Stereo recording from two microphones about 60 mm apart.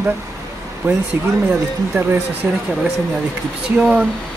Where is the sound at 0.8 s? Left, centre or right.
Right.